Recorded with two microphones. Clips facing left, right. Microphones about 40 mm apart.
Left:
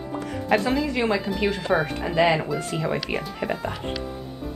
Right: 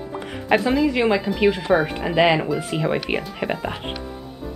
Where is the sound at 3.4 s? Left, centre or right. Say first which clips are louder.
Right 2 dB; right.